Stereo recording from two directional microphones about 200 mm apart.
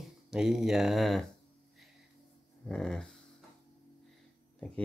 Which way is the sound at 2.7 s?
Centre (ahead or behind).